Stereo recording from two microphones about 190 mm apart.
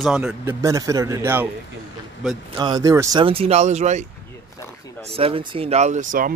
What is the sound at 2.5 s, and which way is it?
Speech, 20° right (ahead or behind).